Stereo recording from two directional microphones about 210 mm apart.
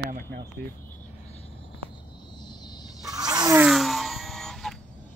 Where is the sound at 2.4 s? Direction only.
20° left (ahead or behind).